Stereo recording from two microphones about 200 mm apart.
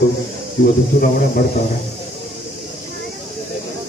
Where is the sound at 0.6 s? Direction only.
45° left (ahead or behind).